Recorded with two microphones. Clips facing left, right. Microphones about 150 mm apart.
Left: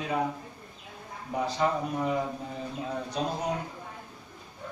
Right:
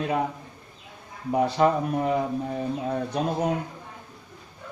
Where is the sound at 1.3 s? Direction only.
60° right (ahead or behind).